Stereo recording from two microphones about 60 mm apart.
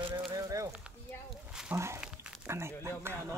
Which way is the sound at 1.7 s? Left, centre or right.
Right.